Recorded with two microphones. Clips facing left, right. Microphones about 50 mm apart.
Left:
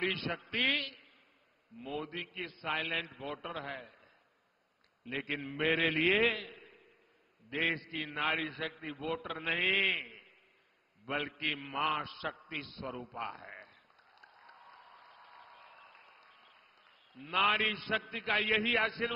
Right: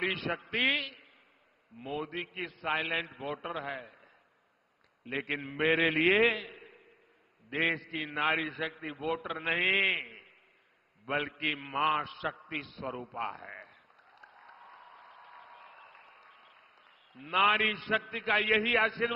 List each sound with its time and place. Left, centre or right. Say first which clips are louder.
0.3 s a man's voice: right 5 dB; centre
1.8 s a man's voice: right 3 dB; centre
2.0 s a man's voice: right 3 dB; centre
6.1 s a sound: right 4 dB; centre
7.4 s a man's voice: right 3 dB; centre
13.3 s a sound: right 3 dB; centre
17.1 s a man's voice: right 4 dB; centre
17.4 s a man's voice: right 3 dB; centre